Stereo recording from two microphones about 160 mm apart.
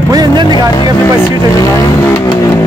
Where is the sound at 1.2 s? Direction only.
15° left (ahead or behind).